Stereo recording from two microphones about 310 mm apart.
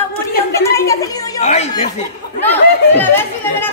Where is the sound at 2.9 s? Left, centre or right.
Centre.